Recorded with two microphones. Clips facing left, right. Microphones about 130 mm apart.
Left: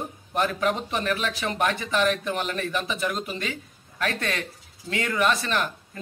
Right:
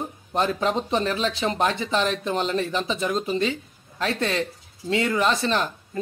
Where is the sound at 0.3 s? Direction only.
25° right (ahead or behind).